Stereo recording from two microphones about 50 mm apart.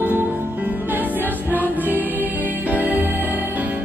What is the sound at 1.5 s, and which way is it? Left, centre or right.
Music, right.